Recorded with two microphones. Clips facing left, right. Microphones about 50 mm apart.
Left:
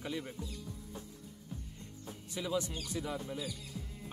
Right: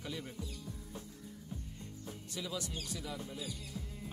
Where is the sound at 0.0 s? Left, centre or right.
Centre.